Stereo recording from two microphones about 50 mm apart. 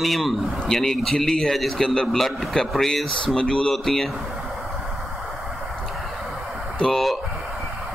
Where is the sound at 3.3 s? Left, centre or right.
Centre.